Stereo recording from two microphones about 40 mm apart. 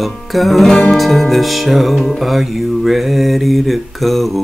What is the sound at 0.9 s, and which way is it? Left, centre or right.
Music, centre.